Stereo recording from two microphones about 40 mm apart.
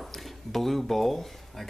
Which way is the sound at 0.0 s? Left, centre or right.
Centre.